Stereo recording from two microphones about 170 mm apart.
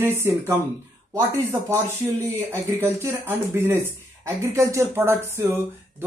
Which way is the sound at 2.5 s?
15° right (ahead or behind).